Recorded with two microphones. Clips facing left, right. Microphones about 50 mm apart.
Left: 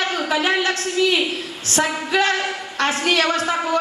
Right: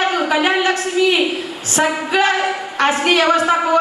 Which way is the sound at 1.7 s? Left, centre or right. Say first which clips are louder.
Right 3 dB; centre.